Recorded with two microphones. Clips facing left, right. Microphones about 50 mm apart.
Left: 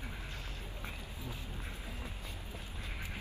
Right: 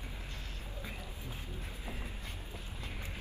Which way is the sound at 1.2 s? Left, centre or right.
Right.